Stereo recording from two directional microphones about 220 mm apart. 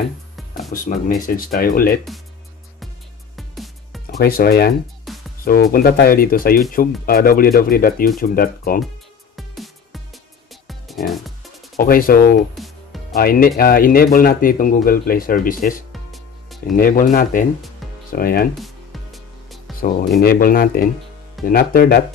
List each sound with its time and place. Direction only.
0.7 s speech: 35° left (ahead or behind)
3.3 s music: centre (ahead or behind)
4.2 s speech: 40° left (ahead or behind)
5.1 s music: centre (ahead or behind)
5.4 s speech: 40° left (ahead or behind)
10.7 s music: centre (ahead or behind)
11.7 s speech: 40° left (ahead or behind)
12.5 s music: centre (ahead or behind)
13.1 s speech: 40° left (ahead or behind)
15.9 s music: centre (ahead or behind)
16.7 s speech: 40° left (ahead or behind)
18.6 s music: centre (ahead or behind)
19.8 s speech: 40° left (ahead or behind)